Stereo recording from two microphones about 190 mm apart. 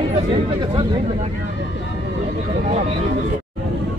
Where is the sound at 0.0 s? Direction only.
30° right (ahead or behind).